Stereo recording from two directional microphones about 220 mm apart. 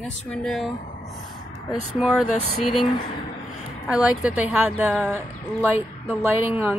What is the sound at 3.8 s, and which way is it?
A woman's voice, 5° right (ahead or behind).